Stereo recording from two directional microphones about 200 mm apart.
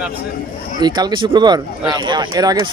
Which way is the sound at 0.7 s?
20° right (ahead or behind).